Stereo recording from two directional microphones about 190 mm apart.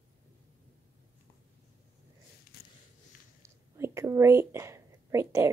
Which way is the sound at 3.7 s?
15° right (ahead or behind).